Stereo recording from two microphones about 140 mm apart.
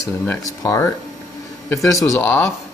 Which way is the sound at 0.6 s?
20° left (ahead or behind).